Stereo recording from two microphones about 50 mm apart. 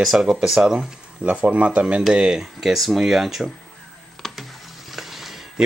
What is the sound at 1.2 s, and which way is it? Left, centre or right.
Speech, right.